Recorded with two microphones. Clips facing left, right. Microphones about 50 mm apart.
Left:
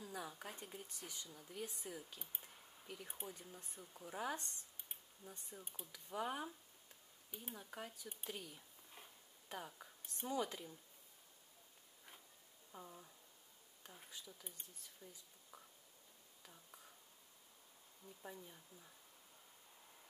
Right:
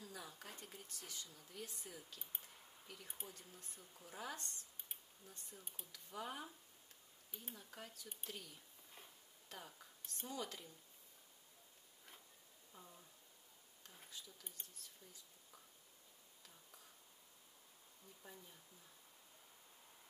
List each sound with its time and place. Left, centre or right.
0.0 s speech: centre
0.8 s speech: left
7.2 s speech: centre
7.5 s a sound: centre
10.1 s speech: centre
12.7 s speech: left